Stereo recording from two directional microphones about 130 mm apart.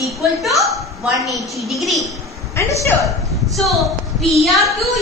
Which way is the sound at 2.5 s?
25° left (ahead or behind).